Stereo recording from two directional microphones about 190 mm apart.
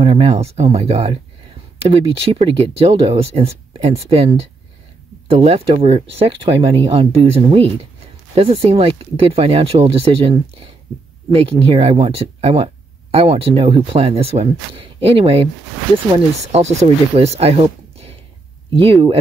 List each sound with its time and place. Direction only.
0.0 s speech: 30° right (ahead or behind)